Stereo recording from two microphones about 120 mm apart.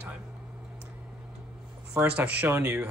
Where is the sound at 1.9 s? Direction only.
10° right (ahead or behind).